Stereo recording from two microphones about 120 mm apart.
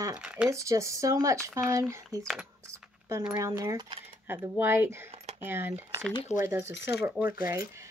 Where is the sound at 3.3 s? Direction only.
25° right (ahead or behind).